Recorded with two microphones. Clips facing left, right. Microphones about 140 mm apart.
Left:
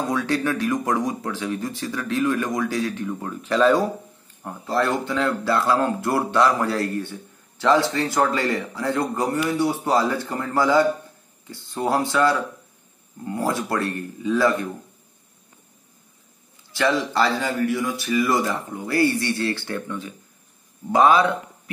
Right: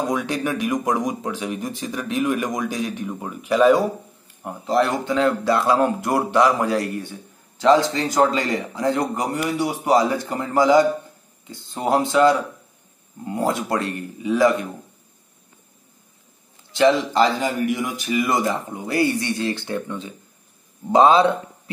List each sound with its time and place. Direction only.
0.0 s speech: 15° right (ahead or behind)
16.7 s speech: 20° right (ahead or behind)